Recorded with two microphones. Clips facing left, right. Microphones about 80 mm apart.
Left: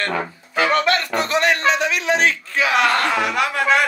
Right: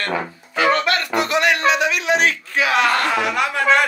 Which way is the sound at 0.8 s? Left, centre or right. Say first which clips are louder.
Even; left.